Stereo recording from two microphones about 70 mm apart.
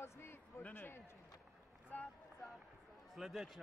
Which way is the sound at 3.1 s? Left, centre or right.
Centre.